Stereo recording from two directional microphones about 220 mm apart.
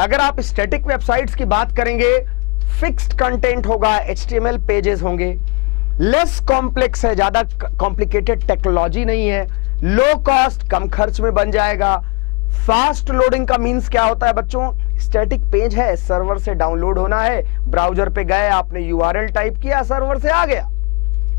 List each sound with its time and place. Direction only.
0.0 s speech: 20° left (ahead or behind)
0.4 s a woman's voice: 10° left (ahead or behind)